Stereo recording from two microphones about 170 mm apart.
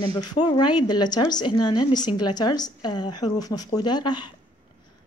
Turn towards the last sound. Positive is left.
turn(degrees=25)  # may be behind; listen again after turning